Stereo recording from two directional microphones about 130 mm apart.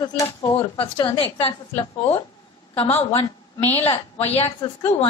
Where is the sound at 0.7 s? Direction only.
40° left (ahead or behind).